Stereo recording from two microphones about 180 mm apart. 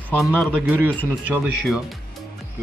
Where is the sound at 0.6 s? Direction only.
10° right (ahead or behind).